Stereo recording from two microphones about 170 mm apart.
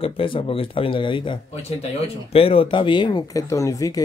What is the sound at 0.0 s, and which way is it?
Speech, 30° left (ahead or behind).